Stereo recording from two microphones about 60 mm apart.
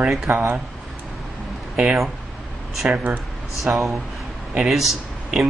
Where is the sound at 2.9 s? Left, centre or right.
Right.